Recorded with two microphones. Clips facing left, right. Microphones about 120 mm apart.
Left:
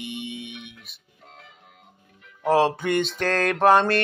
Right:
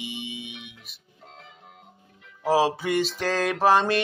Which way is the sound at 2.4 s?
5° right (ahead or behind).